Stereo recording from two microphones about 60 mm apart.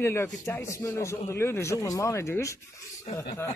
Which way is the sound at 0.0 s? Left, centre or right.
Left.